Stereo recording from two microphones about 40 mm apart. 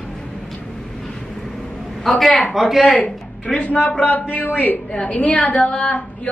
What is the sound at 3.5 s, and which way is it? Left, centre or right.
A man's voice, left.